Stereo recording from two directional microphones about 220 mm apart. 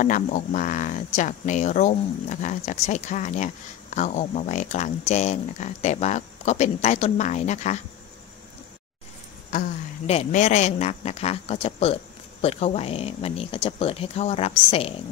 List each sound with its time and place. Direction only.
0.0 s speech: 35° left (ahead or behind)
9.5 s speech: 35° left (ahead or behind)